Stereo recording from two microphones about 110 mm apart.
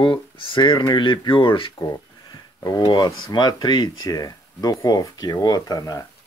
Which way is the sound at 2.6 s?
30° left (ahead or behind).